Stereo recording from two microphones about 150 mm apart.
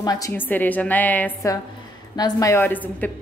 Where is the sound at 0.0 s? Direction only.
25° left (ahead or behind).